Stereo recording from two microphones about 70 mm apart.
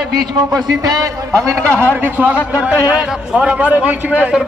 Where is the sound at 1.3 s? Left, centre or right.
Right.